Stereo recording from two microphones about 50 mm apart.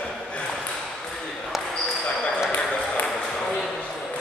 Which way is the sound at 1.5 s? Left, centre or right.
Centre.